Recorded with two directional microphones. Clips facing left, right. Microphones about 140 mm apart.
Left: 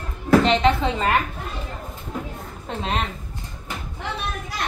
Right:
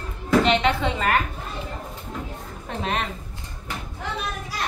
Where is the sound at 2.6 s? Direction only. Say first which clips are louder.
Left 1 dB; 30° left (ahead or behind).